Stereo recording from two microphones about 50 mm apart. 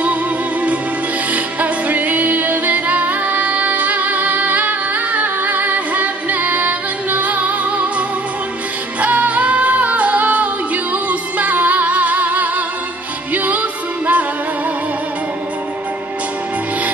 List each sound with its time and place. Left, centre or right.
0.0 s music: right
9.0 s music: right